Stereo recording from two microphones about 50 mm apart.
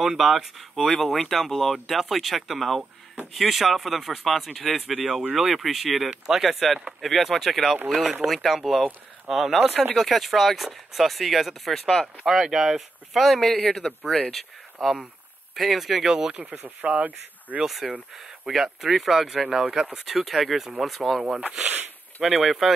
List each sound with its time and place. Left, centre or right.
0.0 s speech: centre
7.9 s speech: centre
8.3 s speech: centre
12.3 s speech: centre
14.3 s speech: centre
16.6 s speech: right
17.6 s speech: centre